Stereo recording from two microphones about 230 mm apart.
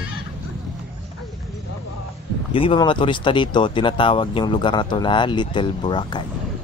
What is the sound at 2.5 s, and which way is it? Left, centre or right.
Speech, left.